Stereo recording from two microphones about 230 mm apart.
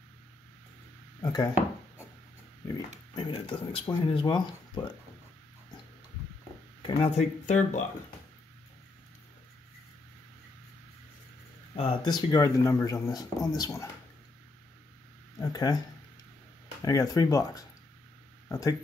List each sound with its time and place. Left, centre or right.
1.2 s speech: centre
3.2 s speech: left
6.8 s speech: left
11.7 s speech: left
15.3 s speech: centre
16.8 s speech: centre